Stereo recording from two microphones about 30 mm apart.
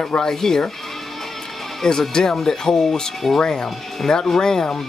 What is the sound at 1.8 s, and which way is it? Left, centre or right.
Speech, left.